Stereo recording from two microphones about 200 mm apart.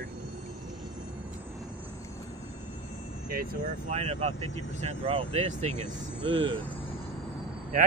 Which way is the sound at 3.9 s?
35° right (ahead or behind).